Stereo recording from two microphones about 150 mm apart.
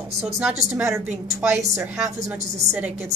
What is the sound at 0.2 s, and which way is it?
A woman's voice, 5° right (ahead or behind).